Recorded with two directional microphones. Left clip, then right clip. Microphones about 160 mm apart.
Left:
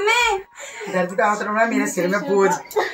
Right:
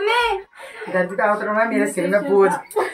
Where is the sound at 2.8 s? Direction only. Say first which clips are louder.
Even; 20° left (ahead or behind).